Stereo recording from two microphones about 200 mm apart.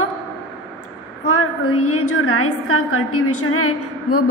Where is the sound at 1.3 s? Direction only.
90° left.